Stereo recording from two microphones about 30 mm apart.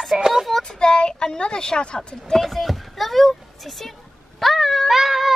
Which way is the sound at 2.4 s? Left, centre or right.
Centre.